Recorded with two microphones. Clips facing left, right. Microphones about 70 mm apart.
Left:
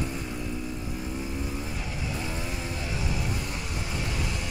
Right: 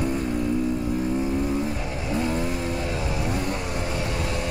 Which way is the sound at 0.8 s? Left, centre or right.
Right.